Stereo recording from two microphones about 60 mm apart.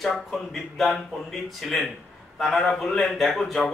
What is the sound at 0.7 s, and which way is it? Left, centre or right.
A man's voice, centre.